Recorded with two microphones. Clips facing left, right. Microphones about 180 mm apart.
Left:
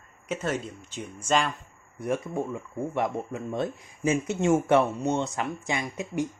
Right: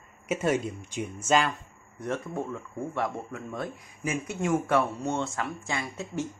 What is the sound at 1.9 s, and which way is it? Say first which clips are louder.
Speech: left 3 dB; 10° left (ahead or behind).